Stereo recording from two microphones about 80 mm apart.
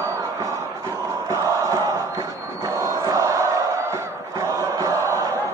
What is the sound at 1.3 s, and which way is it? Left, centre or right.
Crowd, right.